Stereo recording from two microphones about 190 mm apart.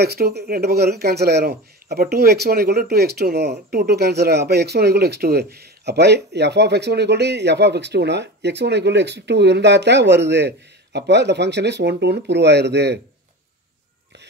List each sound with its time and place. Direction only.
0.0 s speech: 55° right (ahead or behind)